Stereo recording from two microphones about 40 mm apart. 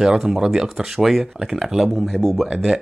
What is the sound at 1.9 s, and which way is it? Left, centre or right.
Speech, centre.